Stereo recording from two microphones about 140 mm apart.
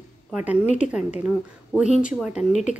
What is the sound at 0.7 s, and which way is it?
A woman's voice, 10° right (ahead or behind).